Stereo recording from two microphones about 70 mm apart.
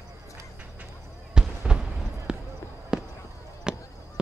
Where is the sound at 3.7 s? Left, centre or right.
Centre.